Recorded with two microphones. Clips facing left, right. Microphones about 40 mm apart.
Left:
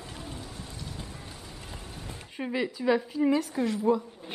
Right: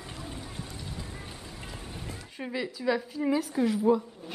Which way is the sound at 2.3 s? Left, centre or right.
Centre.